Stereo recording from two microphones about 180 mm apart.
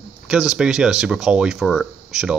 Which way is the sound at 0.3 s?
5° right (ahead or behind).